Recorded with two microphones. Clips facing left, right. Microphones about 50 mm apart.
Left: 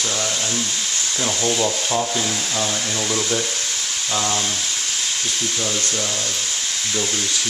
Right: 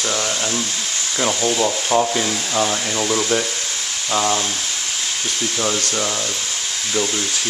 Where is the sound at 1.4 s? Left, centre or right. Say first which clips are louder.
Right 2 dB; centre.